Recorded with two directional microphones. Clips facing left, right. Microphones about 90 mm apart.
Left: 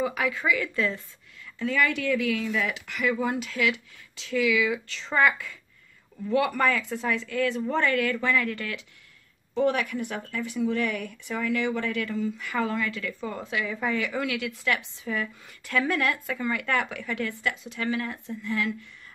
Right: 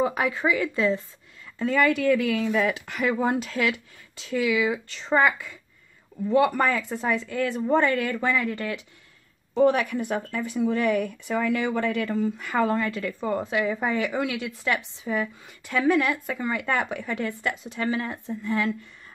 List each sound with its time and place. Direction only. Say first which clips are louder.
0.0 s speech: right 3 dB; 35° right (ahead or behind)
1.6 s speech: right 4 dB; 40° right (ahead or behind)
5.2 s speech: right 1 dB; 25° right (ahead or behind)
9.6 s speech: right 4 dB; 35° right (ahead or behind); by 16.2 s 5° right (ahead or behind)
16.3 s speech: right 1 dB; 25° right (ahead or behind)